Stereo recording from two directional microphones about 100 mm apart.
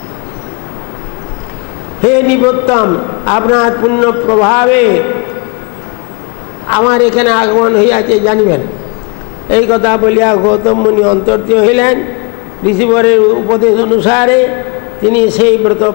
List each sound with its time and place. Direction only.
2.0 s a man's voice: 20° left (ahead or behind)
6.7 s a man's voice: 25° left (ahead or behind)